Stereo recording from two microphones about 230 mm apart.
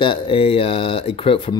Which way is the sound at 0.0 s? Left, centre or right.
Left.